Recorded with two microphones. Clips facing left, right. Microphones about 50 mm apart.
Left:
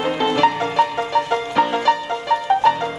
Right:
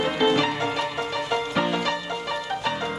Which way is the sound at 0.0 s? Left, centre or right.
Centre.